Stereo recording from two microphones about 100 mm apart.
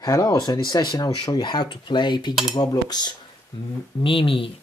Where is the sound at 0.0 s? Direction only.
40° left (ahead or behind).